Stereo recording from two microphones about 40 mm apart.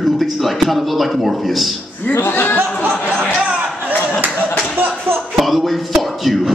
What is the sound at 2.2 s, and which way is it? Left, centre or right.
Speech, left.